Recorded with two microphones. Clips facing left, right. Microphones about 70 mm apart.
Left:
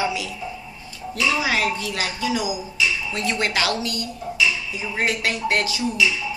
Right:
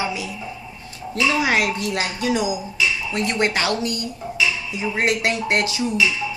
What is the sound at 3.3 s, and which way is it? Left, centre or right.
Speech, centre.